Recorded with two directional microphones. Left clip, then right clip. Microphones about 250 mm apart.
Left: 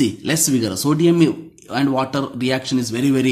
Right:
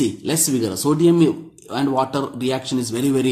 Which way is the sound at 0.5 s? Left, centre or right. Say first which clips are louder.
Even; left.